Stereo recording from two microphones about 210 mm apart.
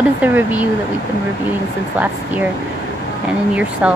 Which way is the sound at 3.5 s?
5° right (ahead or behind).